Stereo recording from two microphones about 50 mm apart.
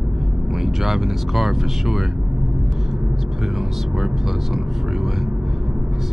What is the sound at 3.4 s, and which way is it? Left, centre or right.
Speech, centre.